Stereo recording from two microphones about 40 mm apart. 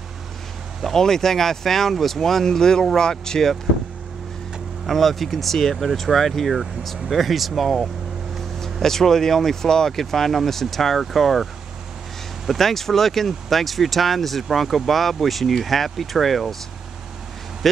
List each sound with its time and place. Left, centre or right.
0.8 s speech: centre
4.8 s speech: centre
12.4 s speech: centre